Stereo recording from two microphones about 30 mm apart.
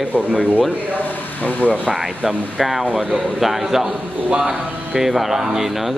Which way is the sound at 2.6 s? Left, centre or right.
Centre.